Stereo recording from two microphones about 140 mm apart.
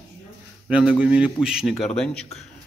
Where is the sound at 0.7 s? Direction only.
10° right (ahead or behind).